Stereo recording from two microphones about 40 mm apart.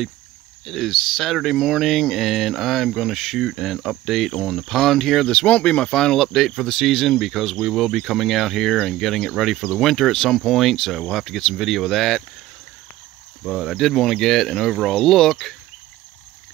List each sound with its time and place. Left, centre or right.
0.7 s cricket: centre
5.3 s speech: left
6.0 s cricket: centre
13.5 s cricket: centre
15.0 s speech: centre